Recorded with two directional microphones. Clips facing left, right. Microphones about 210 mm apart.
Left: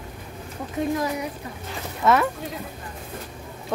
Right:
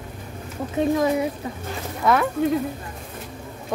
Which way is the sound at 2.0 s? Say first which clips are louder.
Even; centre (ahead or behind).